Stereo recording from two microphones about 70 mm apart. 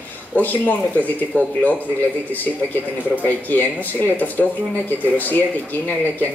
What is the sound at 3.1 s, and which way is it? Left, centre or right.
Speech, left.